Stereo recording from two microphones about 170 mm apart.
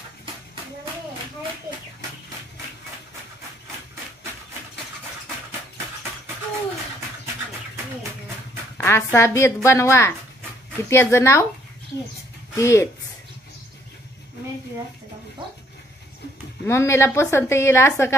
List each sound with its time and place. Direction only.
8.7 s a woman's voice: 15° left (ahead or behind)
12.5 s a woman's voice: 15° left (ahead or behind)
16.6 s a woman's voice: 15° left (ahead or behind)